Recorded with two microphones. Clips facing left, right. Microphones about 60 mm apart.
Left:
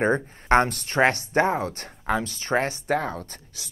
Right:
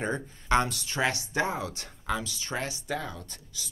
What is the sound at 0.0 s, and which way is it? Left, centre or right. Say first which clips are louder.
Speech: left 9 dB; left.